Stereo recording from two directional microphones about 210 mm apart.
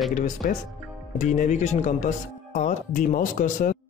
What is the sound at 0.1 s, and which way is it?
Speech, 35° left (ahead or behind).